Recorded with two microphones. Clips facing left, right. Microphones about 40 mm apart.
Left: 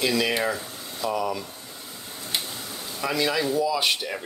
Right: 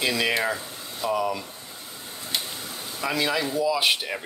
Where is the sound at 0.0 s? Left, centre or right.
Centre.